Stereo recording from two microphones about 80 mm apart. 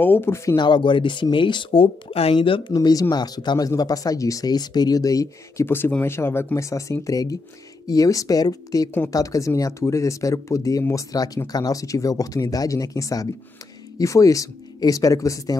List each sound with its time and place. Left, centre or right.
0.0 s speech: left
0.6 s speech: left
2.7 s speech: left
5.7 s speech: left